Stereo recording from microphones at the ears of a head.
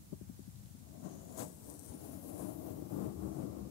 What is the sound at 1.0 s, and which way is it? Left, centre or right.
Train, left.